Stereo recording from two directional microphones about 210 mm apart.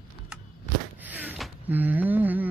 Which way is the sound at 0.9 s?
10° right (ahead or behind).